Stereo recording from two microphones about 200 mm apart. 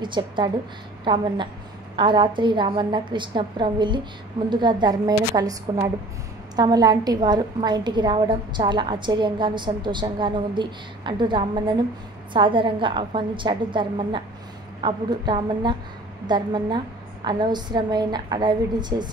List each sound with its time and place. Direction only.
0.0 s a woman's voice: 25° right (ahead or behind)